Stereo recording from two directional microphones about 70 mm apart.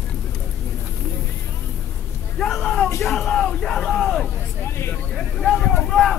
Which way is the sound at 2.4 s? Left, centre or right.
Centre.